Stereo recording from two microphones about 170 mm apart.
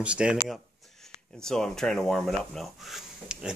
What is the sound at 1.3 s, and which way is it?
Speech, 5° left (ahead or behind).